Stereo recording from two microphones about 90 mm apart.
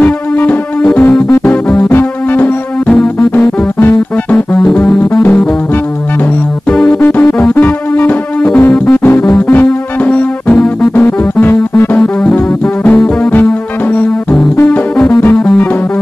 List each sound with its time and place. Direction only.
0.0 s music: 20° left (ahead or behind)
1.9 s music: 25° left (ahead or behind)
2.9 s music: 10° left (ahead or behind)
3.3 s music: 20° left (ahead or behind)
4.6 s music: 5° left (ahead or behind)
6.7 s music: 5° left (ahead or behind)
7.0 s music: 20° left (ahead or behind)
7.9 s music: 20° left (ahead or behind); by 12.4 s 5° left (ahead or behind)
15.3 s music: 10° left (ahead or behind)